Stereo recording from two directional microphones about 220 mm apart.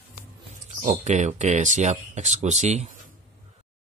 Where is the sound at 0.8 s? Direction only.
30° right (ahead or behind).